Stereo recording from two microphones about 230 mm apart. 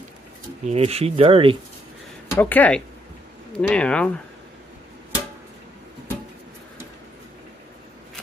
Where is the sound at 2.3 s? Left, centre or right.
Centre.